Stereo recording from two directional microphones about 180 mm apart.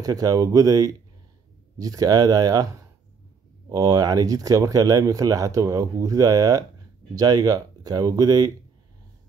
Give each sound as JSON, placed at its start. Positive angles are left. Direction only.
{"t": 0.0, "sound": "speech", "side_deg": -20}